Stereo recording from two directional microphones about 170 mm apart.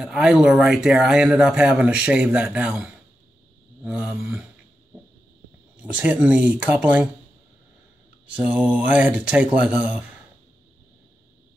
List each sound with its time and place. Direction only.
0.0 s speech: 5° right (ahead or behind)
5.8 s speech: 10° right (ahead or behind)
8.3 s speech: 5° right (ahead or behind)